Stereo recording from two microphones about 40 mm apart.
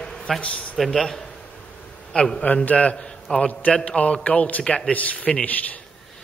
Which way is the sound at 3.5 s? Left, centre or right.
Left.